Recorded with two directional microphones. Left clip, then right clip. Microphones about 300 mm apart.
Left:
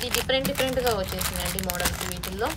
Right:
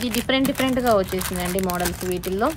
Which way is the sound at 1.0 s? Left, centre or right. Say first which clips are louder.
Right 3 dB; centre.